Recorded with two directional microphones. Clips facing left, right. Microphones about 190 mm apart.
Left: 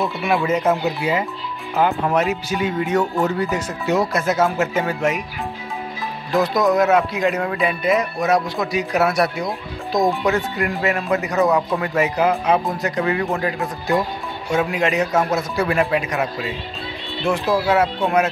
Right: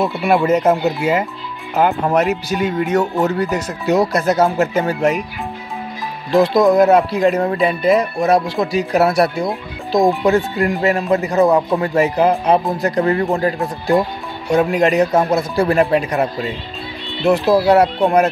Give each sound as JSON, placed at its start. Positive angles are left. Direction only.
{"t": 0.3, "sound": "speech", "side_deg": -45}
{"t": 6.3, "sound": "speech", "side_deg": -25}